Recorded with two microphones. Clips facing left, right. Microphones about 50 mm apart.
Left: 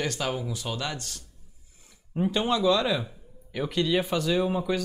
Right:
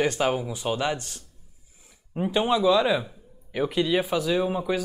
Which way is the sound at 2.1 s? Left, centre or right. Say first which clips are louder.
Right 2 dB; centre.